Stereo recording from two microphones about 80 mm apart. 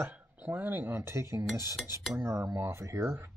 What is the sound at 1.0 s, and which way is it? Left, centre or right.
Speech, right.